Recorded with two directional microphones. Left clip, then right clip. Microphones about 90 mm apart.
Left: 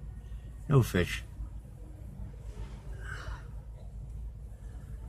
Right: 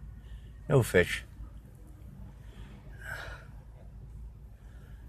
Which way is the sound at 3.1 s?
20° right (ahead or behind).